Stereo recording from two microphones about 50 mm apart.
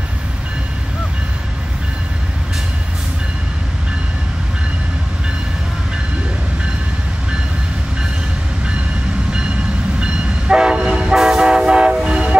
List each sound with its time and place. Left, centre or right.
9.9 s train: centre